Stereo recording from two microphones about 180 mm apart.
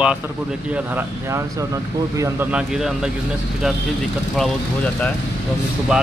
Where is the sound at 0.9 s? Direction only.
15° right (ahead or behind).